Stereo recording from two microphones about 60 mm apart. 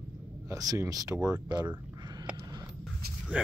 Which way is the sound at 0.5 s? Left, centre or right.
Right.